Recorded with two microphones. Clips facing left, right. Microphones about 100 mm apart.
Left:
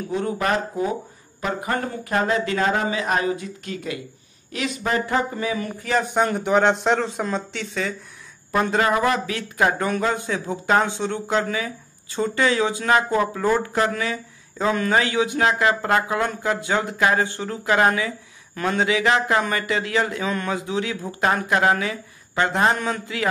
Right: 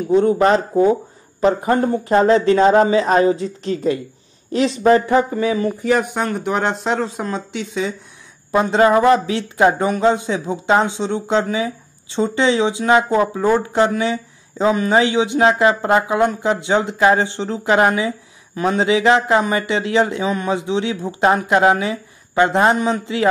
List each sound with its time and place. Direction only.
0.1 s speech: 30° right (ahead or behind)
6.1 s speech: centre (ahead or behind); by 23.2 s 25° right (ahead or behind)